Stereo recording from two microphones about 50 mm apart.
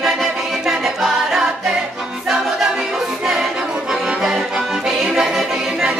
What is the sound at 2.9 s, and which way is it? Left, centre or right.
Accordion, centre.